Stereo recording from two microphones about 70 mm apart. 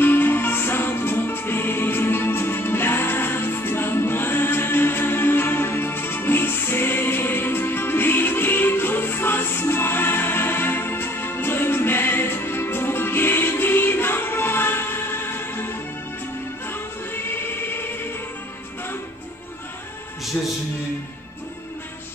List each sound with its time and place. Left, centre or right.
0.0 s music: left